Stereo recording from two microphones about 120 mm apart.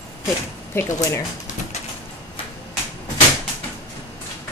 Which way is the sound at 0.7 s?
25° left (ahead or behind).